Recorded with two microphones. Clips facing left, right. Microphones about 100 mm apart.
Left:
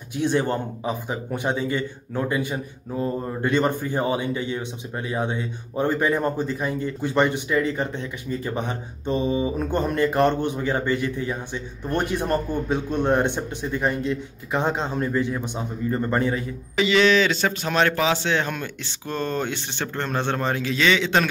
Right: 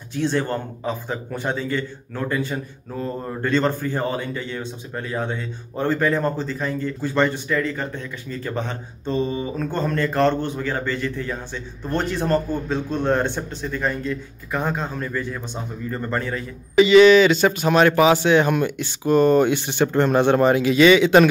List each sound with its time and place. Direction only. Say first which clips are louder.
0.1 s speech: even; 15° left (ahead or behind)
16.7 s speech: right 7 dB; 5° right (ahead or behind)